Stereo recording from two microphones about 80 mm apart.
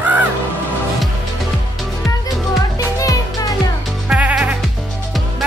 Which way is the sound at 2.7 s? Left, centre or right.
Left.